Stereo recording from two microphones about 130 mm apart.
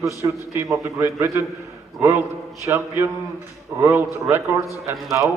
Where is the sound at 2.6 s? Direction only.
20° right (ahead or behind).